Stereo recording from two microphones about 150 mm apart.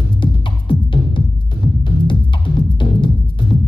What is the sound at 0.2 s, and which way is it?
Music, 35° left (ahead or behind).